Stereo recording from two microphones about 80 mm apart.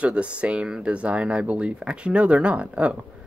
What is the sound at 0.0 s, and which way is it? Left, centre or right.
Speech, centre.